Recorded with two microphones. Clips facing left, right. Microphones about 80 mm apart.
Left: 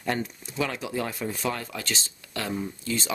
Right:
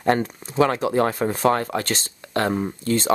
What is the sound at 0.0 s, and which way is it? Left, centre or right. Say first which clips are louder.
Speech: right 9 dB; right.